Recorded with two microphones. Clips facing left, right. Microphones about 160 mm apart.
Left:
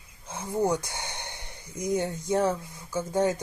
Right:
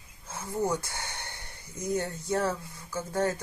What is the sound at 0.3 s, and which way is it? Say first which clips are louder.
Speech: left 3 dB; 15° left (ahead or behind).